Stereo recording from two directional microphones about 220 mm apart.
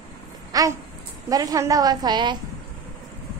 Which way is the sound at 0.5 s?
15° right (ahead or behind).